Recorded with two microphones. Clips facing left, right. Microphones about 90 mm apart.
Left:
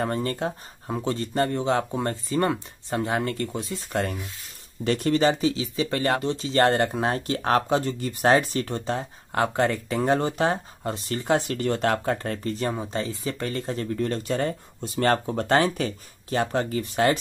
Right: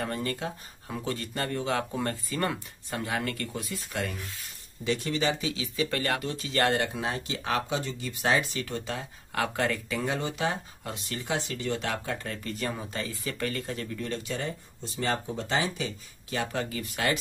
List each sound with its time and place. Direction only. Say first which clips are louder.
0.0 s speech: left 6 dB; 35° left (ahead or behind)
3.9 s speech: left 7 dB; 45° left (ahead or behind)
15.0 s speech: left 8 dB; 60° left (ahead or behind); by 17.2 s 35° left (ahead or behind)